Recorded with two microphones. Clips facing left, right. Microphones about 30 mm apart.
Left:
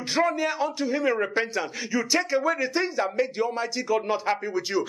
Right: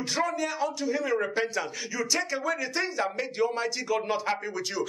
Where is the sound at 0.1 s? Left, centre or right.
Left; by 4.2 s centre.